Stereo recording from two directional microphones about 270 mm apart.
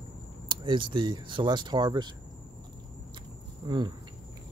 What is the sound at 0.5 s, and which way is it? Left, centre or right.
Speech, centre.